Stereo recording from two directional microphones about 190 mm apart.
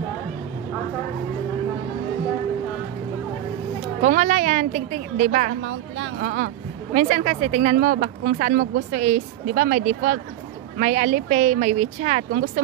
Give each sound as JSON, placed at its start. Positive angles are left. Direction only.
{"t": 4.0, "sound": "a woman's voice", "side_deg": -40}
{"t": 5.6, "sound": "a woman's voice", "side_deg": -85}
{"t": 6.2, "sound": "a woman's voice", "side_deg": -50}